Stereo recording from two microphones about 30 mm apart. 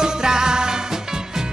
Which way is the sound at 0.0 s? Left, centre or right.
Right.